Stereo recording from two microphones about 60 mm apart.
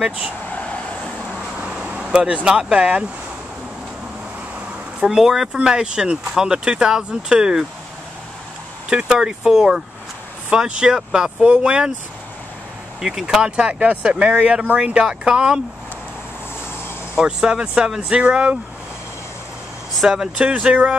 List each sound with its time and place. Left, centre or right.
0.5 s vehicle: left
1.6 s speech: centre
5.0 s speech: centre
8.9 s speech: centre
13.0 s speech: centre
17.2 s speech: centre
20.0 s speech: centre